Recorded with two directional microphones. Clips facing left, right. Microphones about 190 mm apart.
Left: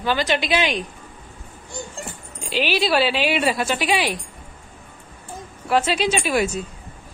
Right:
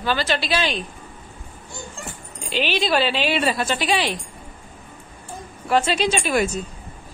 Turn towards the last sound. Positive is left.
turn(degrees=5)  # may be behind; listen again after turning